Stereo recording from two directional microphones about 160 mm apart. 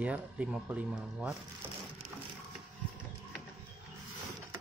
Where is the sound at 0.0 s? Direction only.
10° right (ahead or behind).